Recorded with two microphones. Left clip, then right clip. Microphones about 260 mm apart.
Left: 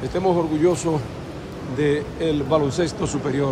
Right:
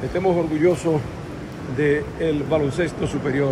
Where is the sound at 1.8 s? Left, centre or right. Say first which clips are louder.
Right 1 dB; centre.